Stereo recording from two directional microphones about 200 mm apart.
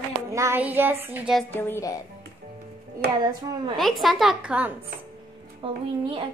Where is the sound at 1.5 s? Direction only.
10° left (ahead or behind).